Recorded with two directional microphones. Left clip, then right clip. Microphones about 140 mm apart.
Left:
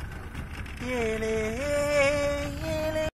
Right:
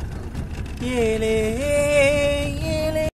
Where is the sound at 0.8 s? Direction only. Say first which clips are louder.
Right 8 dB; centre (ahead or behind).